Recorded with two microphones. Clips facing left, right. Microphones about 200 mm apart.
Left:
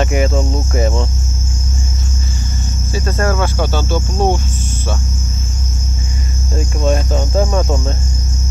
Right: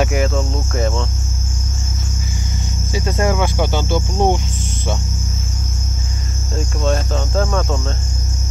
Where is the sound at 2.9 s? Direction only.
15° right (ahead or behind).